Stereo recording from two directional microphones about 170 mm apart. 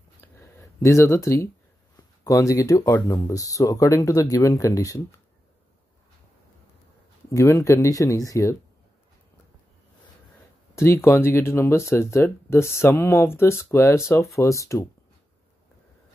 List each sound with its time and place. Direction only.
0.2 s a sound: 15° left (ahead or behind)
2.2 s speech: 20° left (ahead or behind)
7.2 s speech: 15° left (ahead or behind)
10.7 s speech: 15° left (ahead or behind)